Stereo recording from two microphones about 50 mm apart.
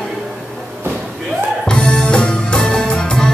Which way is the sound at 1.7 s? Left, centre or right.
Centre.